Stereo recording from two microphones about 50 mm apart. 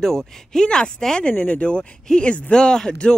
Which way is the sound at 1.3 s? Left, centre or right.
Left.